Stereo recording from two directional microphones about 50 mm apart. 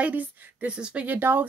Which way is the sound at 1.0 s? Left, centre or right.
Right.